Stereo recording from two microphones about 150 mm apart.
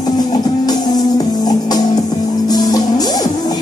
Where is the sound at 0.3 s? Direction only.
25° left (ahead or behind).